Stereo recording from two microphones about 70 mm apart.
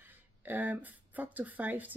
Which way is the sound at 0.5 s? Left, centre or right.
Right.